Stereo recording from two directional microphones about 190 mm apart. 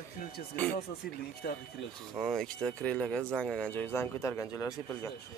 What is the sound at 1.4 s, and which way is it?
Speech, 55° left (ahead or behind).